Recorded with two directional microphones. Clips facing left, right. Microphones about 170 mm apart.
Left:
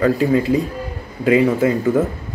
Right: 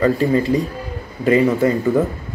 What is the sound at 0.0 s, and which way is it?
Speech, 5° left (ahead or behind).